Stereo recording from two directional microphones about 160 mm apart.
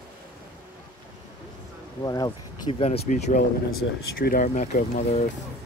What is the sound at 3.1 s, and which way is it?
Speech, 50° left (ahead or behind).